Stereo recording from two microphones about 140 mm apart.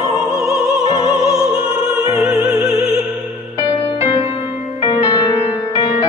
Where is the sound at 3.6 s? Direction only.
35° left (ahead or behind).